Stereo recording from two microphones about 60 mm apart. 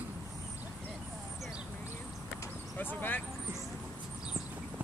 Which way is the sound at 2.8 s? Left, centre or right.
Left.